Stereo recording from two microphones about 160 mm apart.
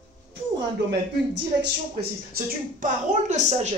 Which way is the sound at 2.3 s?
55° right (ahead or behind).